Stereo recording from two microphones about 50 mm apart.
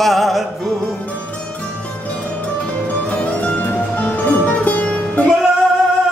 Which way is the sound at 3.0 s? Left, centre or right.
Left.